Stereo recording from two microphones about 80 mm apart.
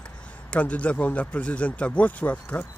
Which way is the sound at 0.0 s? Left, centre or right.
Centre.